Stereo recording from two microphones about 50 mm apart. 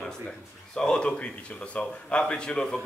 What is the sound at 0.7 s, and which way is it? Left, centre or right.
A man's voice, centre.